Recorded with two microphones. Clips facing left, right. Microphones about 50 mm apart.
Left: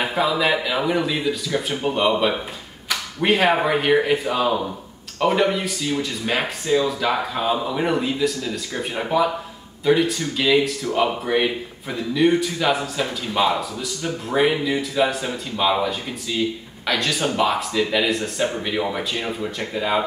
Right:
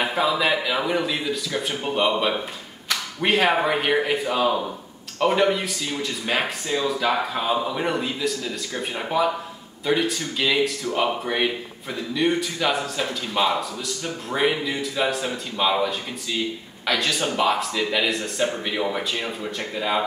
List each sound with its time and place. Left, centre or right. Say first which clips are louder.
0.0 s speech: left 1 dB; centre